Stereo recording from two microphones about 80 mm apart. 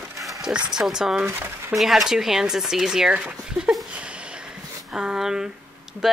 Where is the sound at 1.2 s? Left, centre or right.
Right.